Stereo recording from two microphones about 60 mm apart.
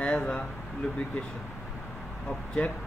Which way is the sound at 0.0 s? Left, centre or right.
Centre.